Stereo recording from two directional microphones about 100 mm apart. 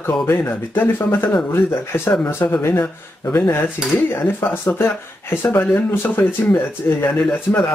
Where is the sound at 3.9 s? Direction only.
20° left (ahead or behind).